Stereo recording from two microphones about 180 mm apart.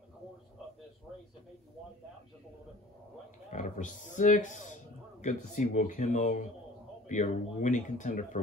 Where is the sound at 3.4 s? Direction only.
45° left (ahead or behind).